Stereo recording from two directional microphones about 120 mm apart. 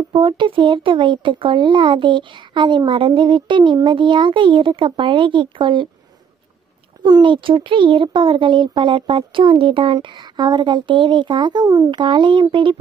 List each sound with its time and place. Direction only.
0.1 s speech: 45° right (ahead or behind)
7.0 s speech: 35° right (ahead or behind)
11.9 s speech: 40° right (ahead or behind)